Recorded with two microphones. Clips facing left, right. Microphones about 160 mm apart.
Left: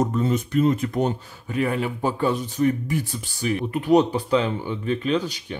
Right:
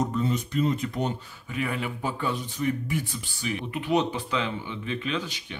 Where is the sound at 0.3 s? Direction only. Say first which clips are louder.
Left 6 dB; 55° left (ahead or behind).